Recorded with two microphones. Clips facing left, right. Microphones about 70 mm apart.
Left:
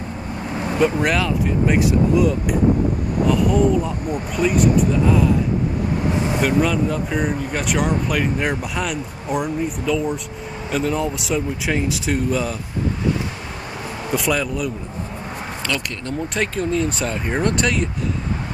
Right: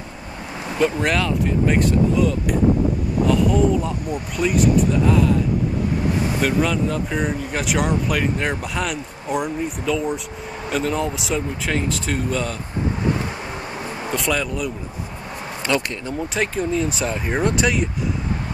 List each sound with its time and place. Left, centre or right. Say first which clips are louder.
0.7 s speech: left 1 dB; centre
6.4 s speech: left 2 dB; centre
14.1 s speech: left 2 dB; centre
15.7 s speech: right 5 dB; right
16.1 s speech: left 1 dB; centre